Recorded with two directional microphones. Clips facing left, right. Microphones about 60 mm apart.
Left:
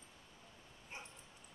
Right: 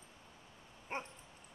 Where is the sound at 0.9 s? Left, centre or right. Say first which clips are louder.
Right 10 dB; right.